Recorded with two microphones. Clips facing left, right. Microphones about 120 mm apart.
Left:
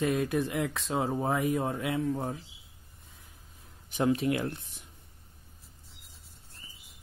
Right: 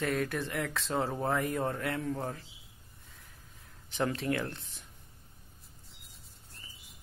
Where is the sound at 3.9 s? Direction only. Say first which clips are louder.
Left 4 dB; 15° left (ahead or behind).